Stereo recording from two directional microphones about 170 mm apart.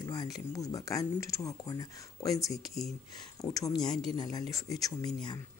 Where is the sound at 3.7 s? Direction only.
Centre (ahead or behind).